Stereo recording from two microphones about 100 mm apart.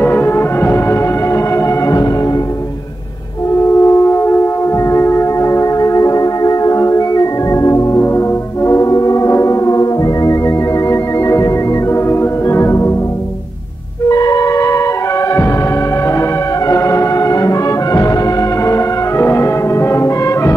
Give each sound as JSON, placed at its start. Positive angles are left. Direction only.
{"t": 0.0, "sound": "music", "side_deg": 20}
{"t": 3.6, "sound": "music", "side_deg": 30}
{"t": 14.0, "sound": "music", "side_deg": 40}
{"t": 16.1, "sound": "brass instrument", "side_deg": 35}